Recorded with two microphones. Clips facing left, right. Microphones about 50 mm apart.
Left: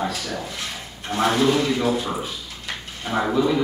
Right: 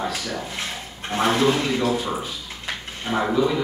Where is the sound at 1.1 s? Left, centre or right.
Right.